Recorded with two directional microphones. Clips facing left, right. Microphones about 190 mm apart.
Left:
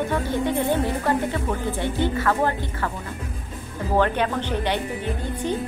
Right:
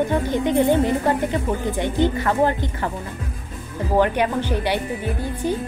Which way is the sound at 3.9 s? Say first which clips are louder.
Right 3 dB; 15° right (ahead or behind).